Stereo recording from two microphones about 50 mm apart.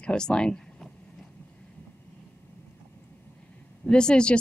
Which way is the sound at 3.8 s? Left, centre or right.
Centre.